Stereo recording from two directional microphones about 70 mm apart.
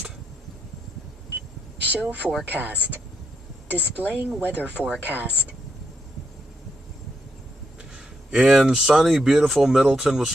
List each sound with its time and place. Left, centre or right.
1.9 s speech: right
4.0 s speech: right
8.3 s speech: centre